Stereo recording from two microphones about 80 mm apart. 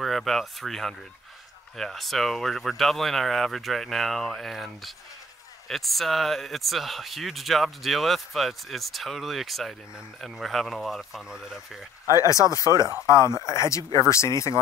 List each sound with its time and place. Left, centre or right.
0.0 s speech: centre
12.1 s speech: left